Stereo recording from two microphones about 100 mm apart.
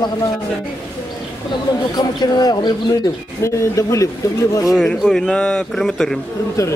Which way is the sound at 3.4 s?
30° left (ahead or behind).